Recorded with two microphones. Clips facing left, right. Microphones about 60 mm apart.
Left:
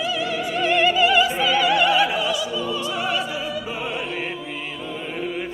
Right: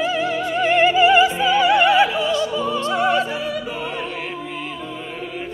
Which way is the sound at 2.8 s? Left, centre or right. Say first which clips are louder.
Right 6 dB; right.